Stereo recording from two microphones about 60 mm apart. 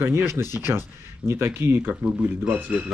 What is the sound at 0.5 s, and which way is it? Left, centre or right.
Speech, right.